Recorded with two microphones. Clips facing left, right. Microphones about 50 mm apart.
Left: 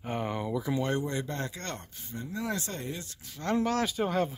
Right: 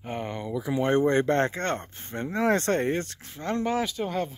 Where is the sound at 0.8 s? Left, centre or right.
Right.